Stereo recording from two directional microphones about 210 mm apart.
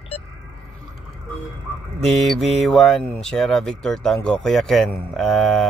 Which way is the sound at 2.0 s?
Centre (ahead or behind).